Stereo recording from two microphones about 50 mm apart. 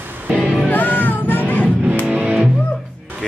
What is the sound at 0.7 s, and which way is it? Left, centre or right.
Music, left.